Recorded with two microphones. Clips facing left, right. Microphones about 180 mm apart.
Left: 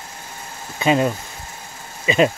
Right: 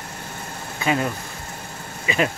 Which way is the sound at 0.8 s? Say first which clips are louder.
Left 5 dB; 20° left (ahead or behind).